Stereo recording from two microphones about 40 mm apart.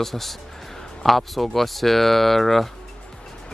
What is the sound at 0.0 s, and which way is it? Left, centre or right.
Speech, centre.